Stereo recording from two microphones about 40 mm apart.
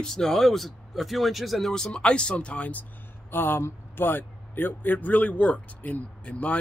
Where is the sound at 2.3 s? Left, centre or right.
Left.